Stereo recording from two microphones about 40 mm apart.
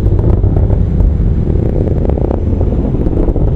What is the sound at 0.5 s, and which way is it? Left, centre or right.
Vehicle, left.